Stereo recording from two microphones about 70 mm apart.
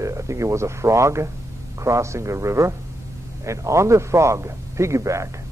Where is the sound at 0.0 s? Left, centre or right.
Right.